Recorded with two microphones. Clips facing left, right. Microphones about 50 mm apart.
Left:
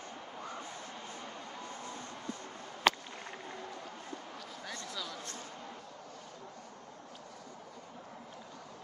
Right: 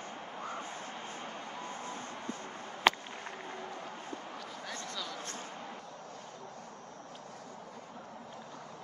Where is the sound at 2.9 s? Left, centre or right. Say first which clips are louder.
Right 2 dB; centre.